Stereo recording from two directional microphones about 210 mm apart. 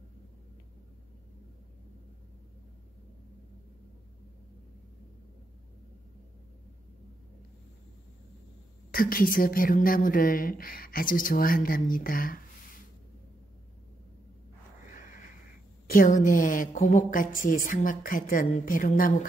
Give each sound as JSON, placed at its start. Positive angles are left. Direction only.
{"t": 8.9, "sound": "a woman's voice", "side_deg": 45}
{"t": 14.9, "sound": "a sound", "side_deg": 40}
{"t": 15.9, "sound": "a woman's voice", "side_deg": 40}